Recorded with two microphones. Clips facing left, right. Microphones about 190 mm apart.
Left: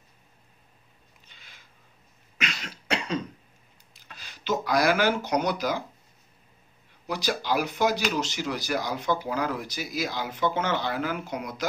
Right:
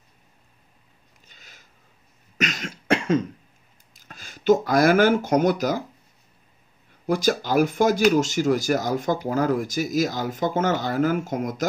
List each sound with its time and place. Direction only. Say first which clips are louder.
1.3 s a sound: right 3 dB; 45° right (ahead or behind)
2.3 s cough: right 7 dB; 45° right (ahead or behind)
4.0 s speech: right 14 dB; 45° right (ahead or behind)
7.1 s speech: right 6 dB; 45° right (ahead or behind)